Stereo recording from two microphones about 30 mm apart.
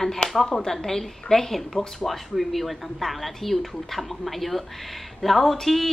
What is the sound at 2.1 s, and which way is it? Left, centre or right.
A woman's voice, centre.